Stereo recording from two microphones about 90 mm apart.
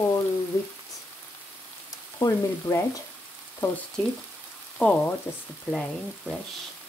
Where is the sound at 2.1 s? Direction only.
40° left (ahead or behind).